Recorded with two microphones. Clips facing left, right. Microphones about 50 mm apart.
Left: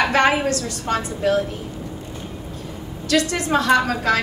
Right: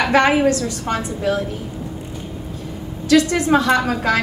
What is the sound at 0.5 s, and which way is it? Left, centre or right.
Speech, centre.